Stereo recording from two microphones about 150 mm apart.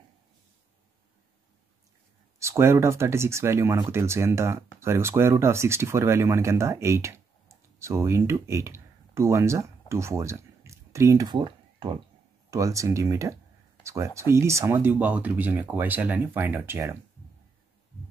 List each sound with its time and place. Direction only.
2.3 s speech: 20° right (ahead or behind)
12.4 s speech: 20° right (ahead or behind)